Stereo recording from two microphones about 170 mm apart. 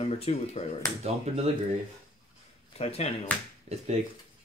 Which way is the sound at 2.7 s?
35° left (ahead or behind).